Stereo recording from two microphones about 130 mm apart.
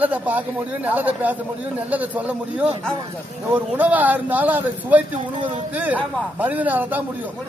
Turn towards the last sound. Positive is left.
turn(degrees=-15)  # may be behind; listen again after turning